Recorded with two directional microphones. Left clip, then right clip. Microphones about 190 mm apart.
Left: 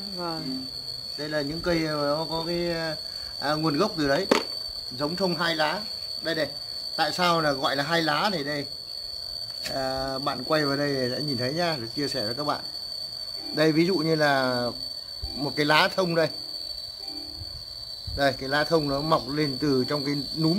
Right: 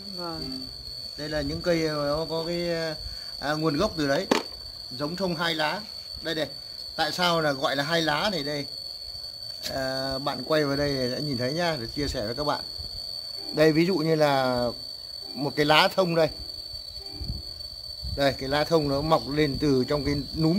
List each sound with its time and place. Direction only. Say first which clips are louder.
1.3 s speech: right 1 dB; 40° right (ahead or behind)
9.7 s speech: even; 35° right (ahead or behind)
13.6 s speech: right 1 dB; 40° right (ahead or behind)
18.1 s speech: left 1 dB; 40° right (ahead or behind)